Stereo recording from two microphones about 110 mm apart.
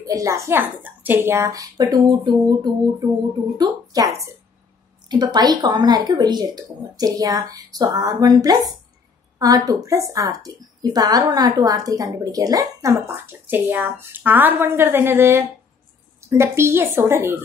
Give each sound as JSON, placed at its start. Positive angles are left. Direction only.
{"t": 0.0, "sound": "a woman's voice", "side_deg": -30}
{"t": 13.3, "sound": "speech", "side_deg": -20}